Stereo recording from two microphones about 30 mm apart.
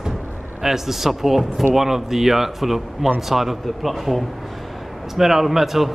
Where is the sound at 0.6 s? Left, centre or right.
Centre.